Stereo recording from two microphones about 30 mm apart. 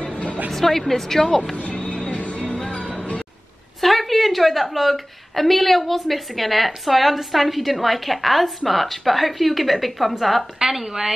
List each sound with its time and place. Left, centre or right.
0.5 s speech: centre
1.2 s speech: left
2.0 s music: left
3.8 s a woman's voice: centre
10.6 s a woman's voice: centre